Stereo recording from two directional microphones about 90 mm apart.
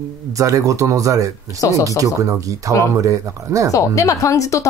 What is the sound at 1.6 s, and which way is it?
Speech, 40° left (ahead or behind).